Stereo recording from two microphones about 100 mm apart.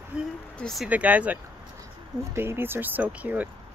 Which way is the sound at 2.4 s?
25° right (ahead or behind).